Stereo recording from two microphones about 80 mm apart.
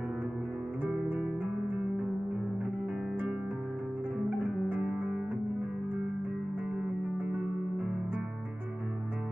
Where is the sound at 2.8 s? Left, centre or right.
Centre.